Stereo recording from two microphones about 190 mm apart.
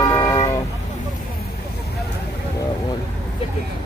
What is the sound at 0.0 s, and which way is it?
Vehicle, 20° left (ahead or behind).